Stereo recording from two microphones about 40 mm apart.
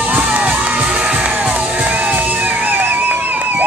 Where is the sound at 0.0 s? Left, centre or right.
Right.